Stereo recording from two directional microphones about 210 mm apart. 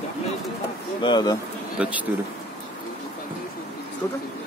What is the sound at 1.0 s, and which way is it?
Speech, 20° left (ahead or behind).